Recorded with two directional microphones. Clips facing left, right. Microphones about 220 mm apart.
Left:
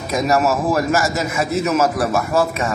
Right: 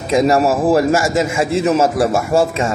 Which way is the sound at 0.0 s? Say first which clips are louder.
Right 4 dB; 25° right (ahead or behind).